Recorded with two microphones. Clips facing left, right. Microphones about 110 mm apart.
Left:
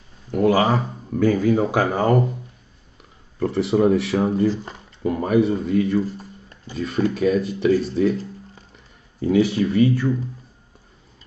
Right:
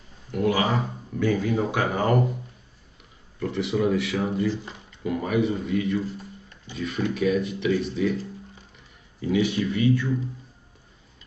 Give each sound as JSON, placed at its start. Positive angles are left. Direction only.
{"t": 0.3, "sound": "speech", "side_deg": 40}
{"t": 3.3, "sound": "speech", "side_deg": 40}